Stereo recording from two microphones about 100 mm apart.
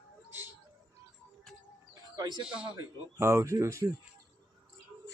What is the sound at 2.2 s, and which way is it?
Speech, 45° right (ahead or behind).